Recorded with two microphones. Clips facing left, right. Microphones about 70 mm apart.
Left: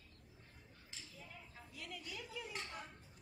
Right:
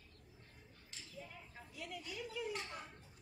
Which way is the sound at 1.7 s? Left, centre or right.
Centre.